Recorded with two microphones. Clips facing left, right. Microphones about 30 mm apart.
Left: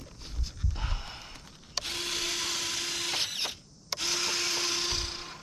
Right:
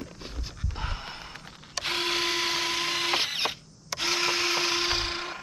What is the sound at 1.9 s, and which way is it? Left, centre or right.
Drill, right.